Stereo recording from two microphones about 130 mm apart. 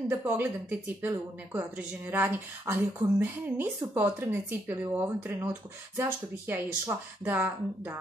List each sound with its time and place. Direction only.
0.1 s speech: 15° right (ahead or behind)